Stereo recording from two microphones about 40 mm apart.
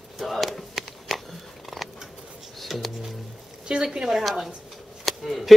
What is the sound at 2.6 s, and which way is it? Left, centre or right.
Music, centre.